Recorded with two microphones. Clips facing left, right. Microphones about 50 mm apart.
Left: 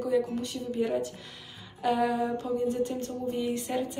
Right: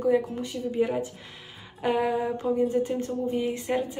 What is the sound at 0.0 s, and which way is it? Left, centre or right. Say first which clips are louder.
Speech: right 3 dB; right.